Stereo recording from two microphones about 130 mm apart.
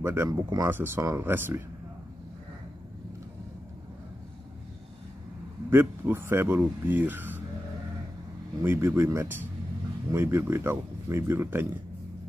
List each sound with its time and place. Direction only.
0.0 s speech: 20° right (ahead or behind)
0.7 s speech: 15° right (ahead or behind)
5.7 s speech: 15° right (ahead or behind)
8.6 s speech: 20° right (ahead or behind)